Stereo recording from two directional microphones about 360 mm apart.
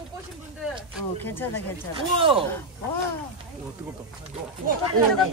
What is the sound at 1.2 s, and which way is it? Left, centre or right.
Speech, centre.